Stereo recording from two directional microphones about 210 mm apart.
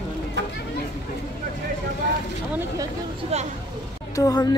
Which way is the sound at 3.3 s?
30° right (ahead or behind).